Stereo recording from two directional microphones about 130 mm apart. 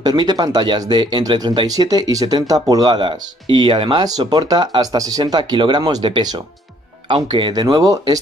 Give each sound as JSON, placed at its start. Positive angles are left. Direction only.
{"t": 0.0, "sound": "speech", "side_deg": -30}